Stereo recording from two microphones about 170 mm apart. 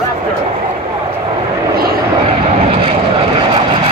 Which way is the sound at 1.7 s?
60° right (ahead or behind).